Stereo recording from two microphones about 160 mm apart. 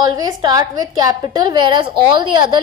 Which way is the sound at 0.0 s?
25° right (ahead or behind).